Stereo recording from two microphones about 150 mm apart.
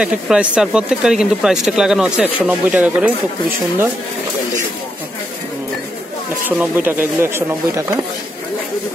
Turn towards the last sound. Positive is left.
turn(degrees=-15)  # may be behind; listen again after turning